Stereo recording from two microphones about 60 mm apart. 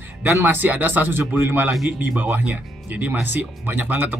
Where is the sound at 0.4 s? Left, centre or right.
Right.